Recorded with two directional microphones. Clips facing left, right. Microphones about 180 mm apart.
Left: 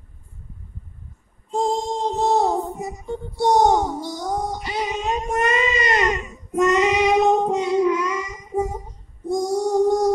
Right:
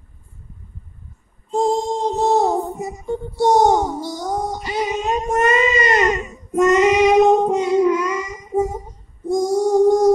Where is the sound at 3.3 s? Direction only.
45° right (ahead or behind).